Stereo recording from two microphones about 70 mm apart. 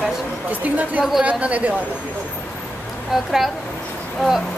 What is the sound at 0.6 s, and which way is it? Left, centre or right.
A woman's voice, right.